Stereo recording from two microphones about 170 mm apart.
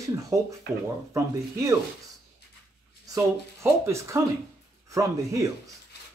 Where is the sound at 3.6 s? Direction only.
15° right (ahead or behind).